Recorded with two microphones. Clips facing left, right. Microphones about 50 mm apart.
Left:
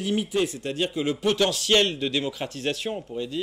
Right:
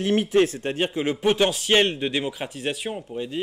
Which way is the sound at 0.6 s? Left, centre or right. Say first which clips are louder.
Right 2 dB; right.